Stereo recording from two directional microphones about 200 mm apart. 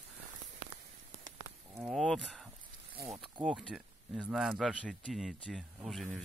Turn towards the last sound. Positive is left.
turn(degrees=0)  # may be behind; listen again after turning